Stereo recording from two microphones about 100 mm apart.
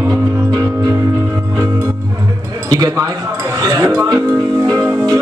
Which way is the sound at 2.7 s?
40° right (ahead or behind).